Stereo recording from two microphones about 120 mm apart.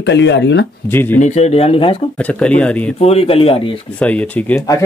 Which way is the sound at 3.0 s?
60° left (ahead or behind).